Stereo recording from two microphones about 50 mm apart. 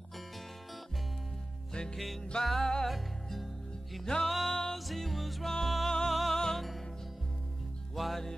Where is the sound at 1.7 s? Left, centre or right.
Centre.